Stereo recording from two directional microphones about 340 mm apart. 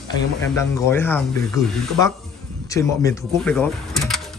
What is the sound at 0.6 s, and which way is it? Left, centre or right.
Speech, centre.